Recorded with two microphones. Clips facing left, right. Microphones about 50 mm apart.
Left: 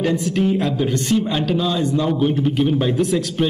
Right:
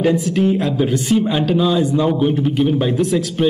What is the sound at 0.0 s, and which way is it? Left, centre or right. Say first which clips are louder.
Speech: right 3 dB; centre.